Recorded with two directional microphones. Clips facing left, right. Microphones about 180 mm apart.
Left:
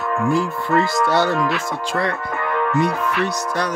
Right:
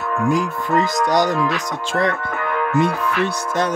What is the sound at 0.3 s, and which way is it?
Speech, 15° right (ahead or behind).